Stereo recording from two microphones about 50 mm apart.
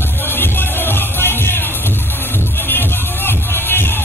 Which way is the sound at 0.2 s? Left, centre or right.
Left.